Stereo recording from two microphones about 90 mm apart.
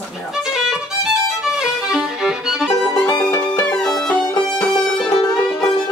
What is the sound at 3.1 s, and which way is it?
Music, 40° left (ahead or behind).